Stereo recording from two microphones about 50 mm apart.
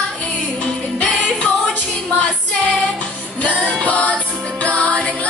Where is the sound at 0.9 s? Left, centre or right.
Left.